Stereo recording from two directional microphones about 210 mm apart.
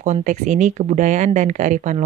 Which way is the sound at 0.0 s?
35° right (ahead or behind).